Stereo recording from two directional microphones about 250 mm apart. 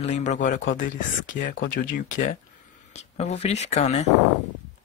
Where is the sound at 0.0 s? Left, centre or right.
Left.